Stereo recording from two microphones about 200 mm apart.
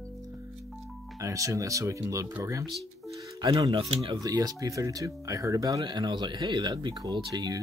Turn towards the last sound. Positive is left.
turn(degrees=-20)  # may be behind; listen again after turning